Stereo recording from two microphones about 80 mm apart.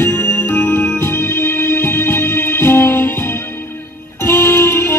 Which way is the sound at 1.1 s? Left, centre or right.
Left.